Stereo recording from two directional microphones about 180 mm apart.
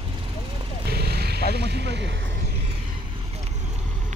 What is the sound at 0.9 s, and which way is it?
Vehicle, 60° right (ahead or behind).